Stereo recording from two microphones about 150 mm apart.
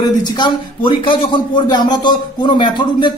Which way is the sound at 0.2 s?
30° left (ahead or behind).